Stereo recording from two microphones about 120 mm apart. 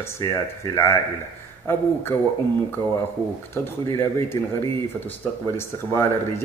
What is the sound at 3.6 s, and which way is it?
Speech, 20° left (ahead or behind).